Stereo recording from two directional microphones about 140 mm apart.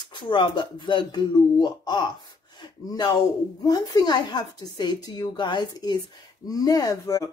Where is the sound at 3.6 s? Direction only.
30° left (ahead or behind).